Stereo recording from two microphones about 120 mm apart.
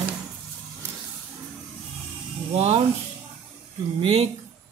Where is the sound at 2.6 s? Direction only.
60° right (ahead or behind).